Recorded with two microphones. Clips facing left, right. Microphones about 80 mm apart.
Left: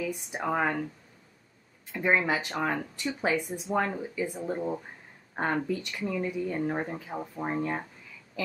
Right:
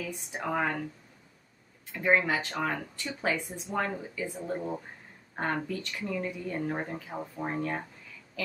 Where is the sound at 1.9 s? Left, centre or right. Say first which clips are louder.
Even; centre.